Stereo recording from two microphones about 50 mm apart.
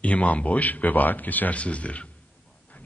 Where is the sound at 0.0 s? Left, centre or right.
Left.